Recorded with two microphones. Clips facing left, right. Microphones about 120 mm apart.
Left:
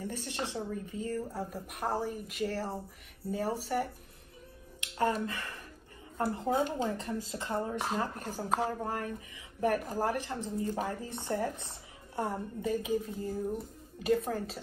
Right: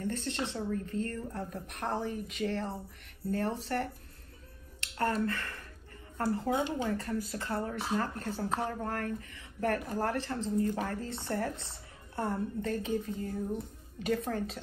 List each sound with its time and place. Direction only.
0.0 s a woman's voice: 10° left (ahead or behind)